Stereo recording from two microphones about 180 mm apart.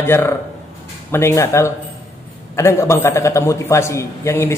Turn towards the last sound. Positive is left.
turn(degrees=15)  # may be behind; listen again after turning